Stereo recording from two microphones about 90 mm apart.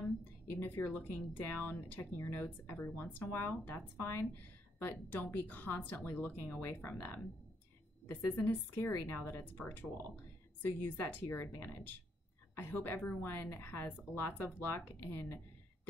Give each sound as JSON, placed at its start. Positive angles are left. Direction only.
{"t": 0.5, "sound": "speech", "side_deg": 20}
{"t": 8.7, "sound": "speech", "side_deg": 25}